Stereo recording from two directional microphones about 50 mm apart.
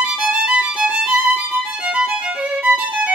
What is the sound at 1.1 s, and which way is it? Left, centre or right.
Violin, right.